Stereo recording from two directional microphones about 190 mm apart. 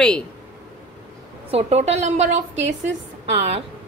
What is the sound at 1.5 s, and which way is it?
A woman's voice, 35° right (ahead or behind).